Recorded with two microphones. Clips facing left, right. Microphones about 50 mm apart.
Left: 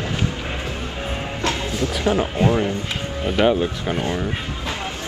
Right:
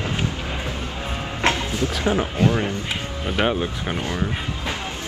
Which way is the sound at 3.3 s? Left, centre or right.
Centre.